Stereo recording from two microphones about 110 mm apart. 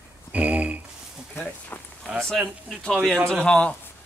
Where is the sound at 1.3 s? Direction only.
15° left (ahead or behind).